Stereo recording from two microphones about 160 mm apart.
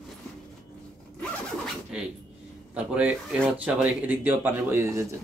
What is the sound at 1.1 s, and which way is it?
Zipper, centre (ahead or behind).